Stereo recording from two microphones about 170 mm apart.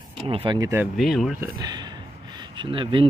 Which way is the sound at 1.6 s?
25° right (ahead or behind).